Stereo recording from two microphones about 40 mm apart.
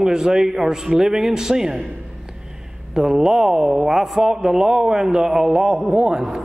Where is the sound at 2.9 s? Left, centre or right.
Centre.